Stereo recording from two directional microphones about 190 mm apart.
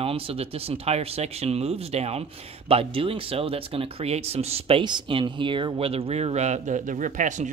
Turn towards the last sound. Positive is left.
turn(degrees=-40)  # may be behind; listen again after turning